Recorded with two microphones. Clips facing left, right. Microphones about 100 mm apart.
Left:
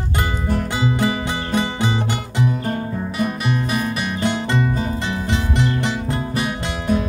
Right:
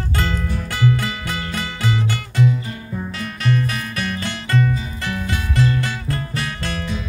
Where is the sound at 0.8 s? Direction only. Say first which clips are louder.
Right 1 dB; 20° left (ahead or behind).